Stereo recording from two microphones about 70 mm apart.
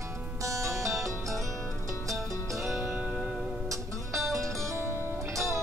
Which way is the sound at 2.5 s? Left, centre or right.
Right.